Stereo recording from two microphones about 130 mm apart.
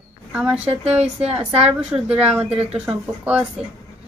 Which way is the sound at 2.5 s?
50° right (ahead or behind).